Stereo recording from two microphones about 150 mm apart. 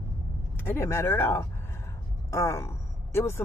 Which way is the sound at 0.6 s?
15° left (ahead or behind).